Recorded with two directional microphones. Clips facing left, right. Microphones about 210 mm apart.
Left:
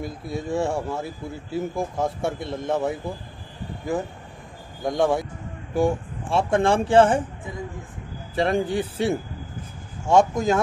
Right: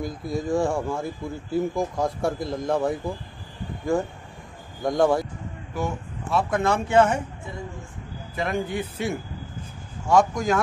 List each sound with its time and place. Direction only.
0.0 s speech: centre (ahead or behind)
5.8 s speech: 30° left (ahead or behind)
8.4 s speech: 30° left (ahead or behind)